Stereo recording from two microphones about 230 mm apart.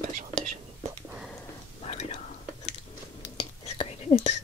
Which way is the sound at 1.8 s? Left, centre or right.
Left.